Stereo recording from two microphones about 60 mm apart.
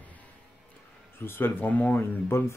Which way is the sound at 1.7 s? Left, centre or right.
Left.